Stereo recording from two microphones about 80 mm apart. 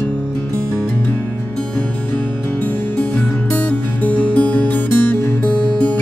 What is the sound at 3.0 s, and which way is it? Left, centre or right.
Music, centre.